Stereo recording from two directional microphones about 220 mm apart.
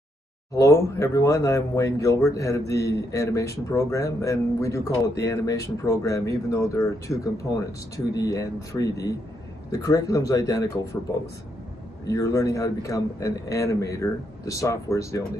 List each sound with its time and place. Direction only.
0.6 s a man's voice: 15° left (ahead or behind)